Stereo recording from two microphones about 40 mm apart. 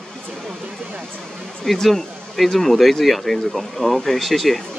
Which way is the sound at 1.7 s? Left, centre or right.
Centre.